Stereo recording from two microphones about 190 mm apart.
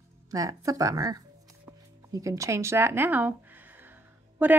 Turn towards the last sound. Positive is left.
turn(degrees=-10)  # may be behind; listen again after turning